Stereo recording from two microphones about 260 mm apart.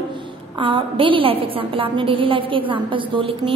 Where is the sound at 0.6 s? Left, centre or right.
Centre.